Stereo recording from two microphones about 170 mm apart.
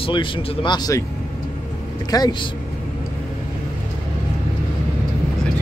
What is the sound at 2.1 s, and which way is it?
Speech, 25° left (ahead or behind).